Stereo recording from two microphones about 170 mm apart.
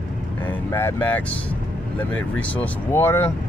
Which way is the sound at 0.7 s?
15° left (ahead or behind).